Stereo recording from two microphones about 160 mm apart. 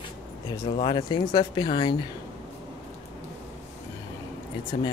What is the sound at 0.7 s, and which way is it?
Speech, 30° left (ahead or behind).